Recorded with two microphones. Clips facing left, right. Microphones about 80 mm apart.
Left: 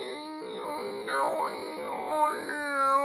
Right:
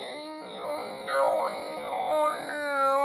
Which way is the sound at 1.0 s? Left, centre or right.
Centre.